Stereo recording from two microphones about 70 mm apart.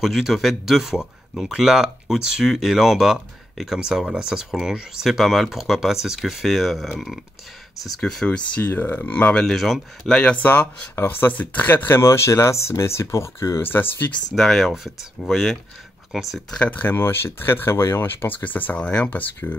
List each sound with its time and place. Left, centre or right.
0.0 s speech: centre
8.5 s speech: left
9.4 s speech: centre
10.1 s speech: centre; by 14.1 s left
14.3 s speech: centre
16.5 s speech: left